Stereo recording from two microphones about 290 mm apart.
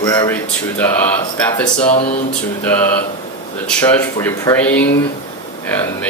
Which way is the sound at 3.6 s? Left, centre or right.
Centre.